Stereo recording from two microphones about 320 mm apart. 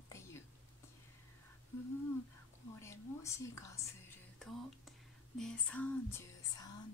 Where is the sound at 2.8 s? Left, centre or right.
Centre.